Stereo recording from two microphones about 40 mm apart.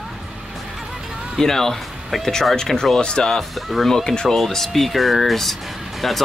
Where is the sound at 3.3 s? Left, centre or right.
Centre.